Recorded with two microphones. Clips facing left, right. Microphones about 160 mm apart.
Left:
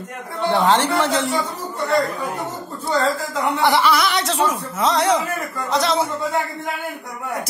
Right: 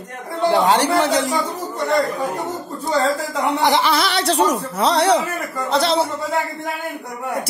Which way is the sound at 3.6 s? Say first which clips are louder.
Left 1 dB; 20° right (ahead or behind).